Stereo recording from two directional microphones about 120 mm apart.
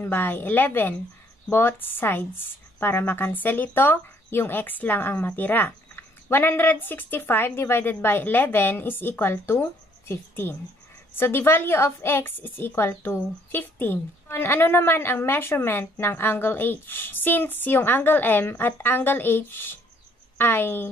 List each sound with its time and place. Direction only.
0.0 s a woman's voice: 15° left (ahead or behind)